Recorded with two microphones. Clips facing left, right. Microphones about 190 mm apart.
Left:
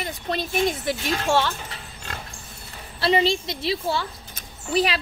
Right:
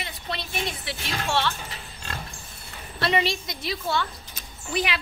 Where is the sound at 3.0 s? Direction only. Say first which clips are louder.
Left 4 dB; 30° left (ahead or behind).